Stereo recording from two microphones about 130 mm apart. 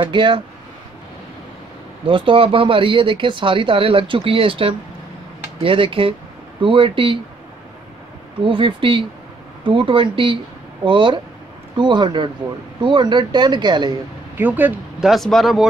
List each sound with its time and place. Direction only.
0.0 s speech: 40° right (ahead or behind)
2.0 s speech: 40° right (ahead or behind)
8.5 s speech: 40° right (ahead or behind)
14.3 s speech: 15° right (ahead or behind)
15.0 s speech: centre (ahead or behind)